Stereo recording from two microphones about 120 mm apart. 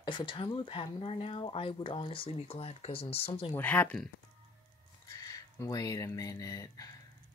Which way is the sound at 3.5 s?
15° left (ahead or behind).